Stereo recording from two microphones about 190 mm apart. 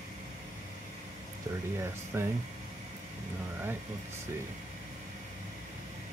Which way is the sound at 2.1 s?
10° right (ahead or behind).